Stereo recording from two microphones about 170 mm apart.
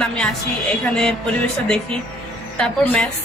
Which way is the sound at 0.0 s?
5° left (ahead or behind).